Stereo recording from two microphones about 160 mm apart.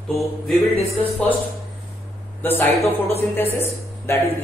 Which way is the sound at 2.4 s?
15° left (ahead or behind).